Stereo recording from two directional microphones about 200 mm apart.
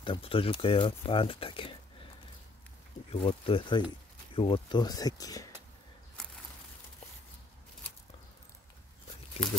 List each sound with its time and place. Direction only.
0.0 s speech: 25° left (ahead or behind)
3.1 s speech: 30° left (ahead or behind)
9.4 s speech: 5° left (ahead or behind)